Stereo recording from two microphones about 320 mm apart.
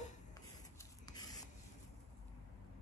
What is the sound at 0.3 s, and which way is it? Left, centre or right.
Rub, centre.